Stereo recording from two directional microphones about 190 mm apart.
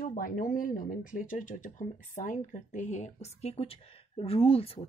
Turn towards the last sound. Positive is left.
turn(degrees=30)  # may be behind; listen again after turning